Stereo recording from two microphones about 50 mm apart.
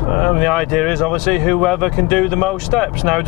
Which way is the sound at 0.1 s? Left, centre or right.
Centre.